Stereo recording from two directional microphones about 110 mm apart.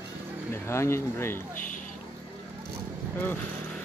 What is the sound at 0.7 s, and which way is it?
Speech, 25° left (ahead or behind).